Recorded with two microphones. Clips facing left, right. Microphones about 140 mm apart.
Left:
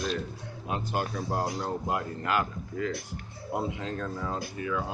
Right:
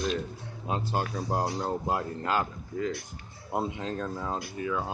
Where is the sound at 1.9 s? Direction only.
30° right (ahead or behind).